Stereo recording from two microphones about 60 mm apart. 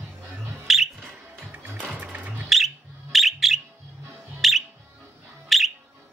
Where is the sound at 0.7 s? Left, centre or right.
Centre.